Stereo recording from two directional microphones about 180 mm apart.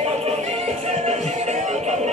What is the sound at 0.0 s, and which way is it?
Music, 35° right (ahead or behind).